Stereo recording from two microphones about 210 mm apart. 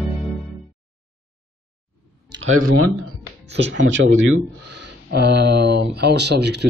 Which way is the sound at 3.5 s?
60° right (ahead or behind).